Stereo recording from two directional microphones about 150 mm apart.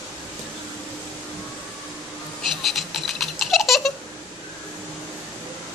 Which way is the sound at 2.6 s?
Centre (ahead or behind).